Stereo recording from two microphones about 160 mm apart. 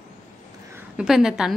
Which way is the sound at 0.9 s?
5° right (ahead or behind).